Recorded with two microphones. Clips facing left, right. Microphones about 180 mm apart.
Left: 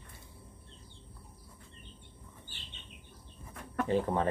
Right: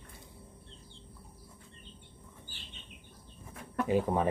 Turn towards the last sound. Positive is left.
turn(degrees=-10)  # may be behind; listen again after turning